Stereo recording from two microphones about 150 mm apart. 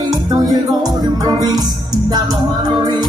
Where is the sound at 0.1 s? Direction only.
25° right (ahead or behind).